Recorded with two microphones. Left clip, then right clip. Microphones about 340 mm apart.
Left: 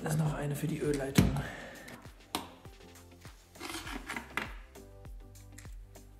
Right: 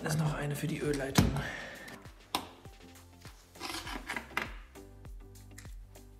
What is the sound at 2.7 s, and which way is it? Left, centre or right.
Music, centre.